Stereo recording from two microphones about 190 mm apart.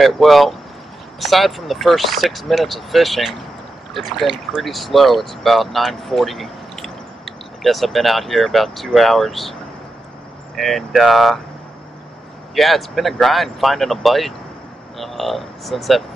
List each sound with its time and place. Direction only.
0.0 s speech: centre (ahead or behind)
10.6 s speech: centre (ahead or behind)
12.5 s speech: centre (ahead or behind)